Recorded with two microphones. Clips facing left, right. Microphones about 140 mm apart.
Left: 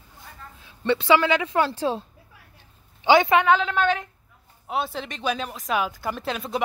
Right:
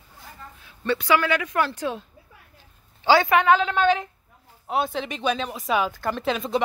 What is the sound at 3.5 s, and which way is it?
Speech, 10° right (ahead or behind).